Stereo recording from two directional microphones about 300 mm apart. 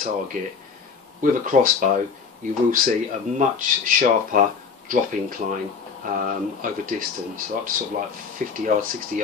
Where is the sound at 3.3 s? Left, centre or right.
Right.